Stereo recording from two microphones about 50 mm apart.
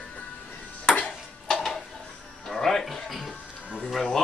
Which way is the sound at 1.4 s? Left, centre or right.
Centre.